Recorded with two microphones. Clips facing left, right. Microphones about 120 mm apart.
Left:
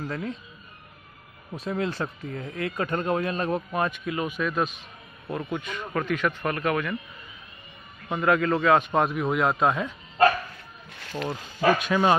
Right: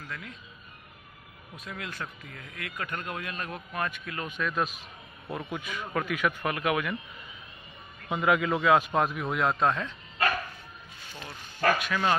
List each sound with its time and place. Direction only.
0.0 s speech: 35° left (ahead or behind)
1.5 s speech: 30° left (ahead or behind)
4.3 s a man's voice: 5° left (ahead or behind)
8.1 s a man's voice: 5° right (ahead or behind); by 9.9 s 10° left (ahead or behind)
10.9 s speech: 80° left
11.7 s speech: 20° left (ahead or behind)